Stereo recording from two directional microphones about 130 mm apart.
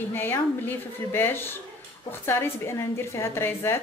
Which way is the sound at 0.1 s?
15° left (ahead or behind).